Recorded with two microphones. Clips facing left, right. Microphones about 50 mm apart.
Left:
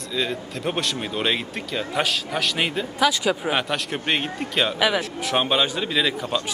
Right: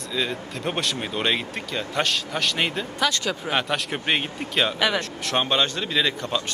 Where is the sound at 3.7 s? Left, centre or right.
Centre.